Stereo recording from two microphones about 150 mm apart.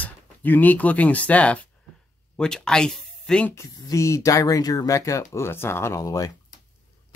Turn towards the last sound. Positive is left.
turn(degrees=25)  # may be behind; listen again after turning